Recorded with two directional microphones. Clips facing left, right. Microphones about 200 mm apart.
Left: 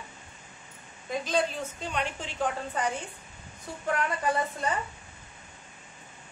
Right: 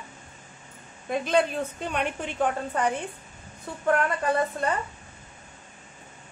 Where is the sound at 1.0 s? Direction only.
60° right (ahead or behind).